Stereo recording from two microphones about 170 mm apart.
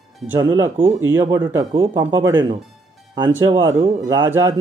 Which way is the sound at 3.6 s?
20° right (ahead or behind).